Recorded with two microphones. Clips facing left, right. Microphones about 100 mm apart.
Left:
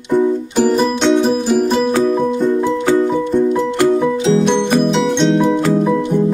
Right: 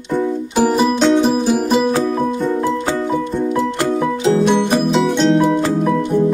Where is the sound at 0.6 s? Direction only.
5° right (ahead or behind).